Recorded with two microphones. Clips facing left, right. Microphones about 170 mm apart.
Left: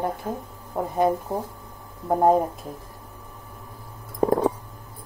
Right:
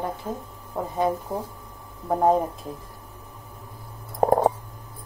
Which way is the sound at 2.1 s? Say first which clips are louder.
Left 2 dB; 10° left (ahead or behind).